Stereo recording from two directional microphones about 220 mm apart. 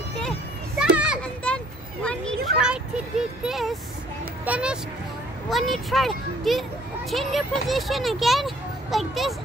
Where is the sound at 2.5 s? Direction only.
45° right (ahead or behind).